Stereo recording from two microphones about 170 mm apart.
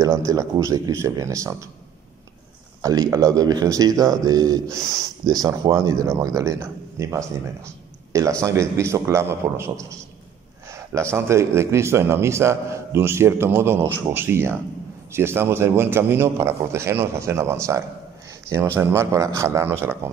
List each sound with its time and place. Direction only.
0.0 s a man's voice: 20° right (ahead or behind)
2.8 s a man's voice: 20° right (ahead or behind)